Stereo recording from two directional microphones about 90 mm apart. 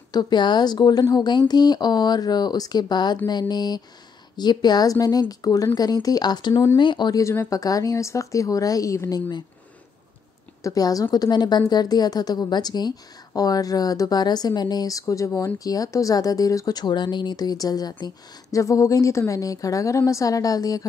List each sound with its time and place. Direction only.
0.1 s a woman's voice: 55° left (ahead or behind)
7.2 s speech: 35° left (ahead or behind)
10.6 s speech: 40° left (ahead or behind)
11.1 s a woman's voice: 55° left (ahead or behind)